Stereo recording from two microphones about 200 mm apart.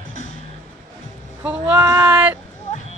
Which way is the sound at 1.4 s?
10° right (ahead or behind).